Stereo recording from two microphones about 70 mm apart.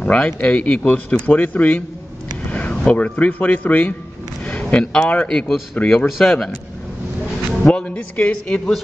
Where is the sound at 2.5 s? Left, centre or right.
Centre.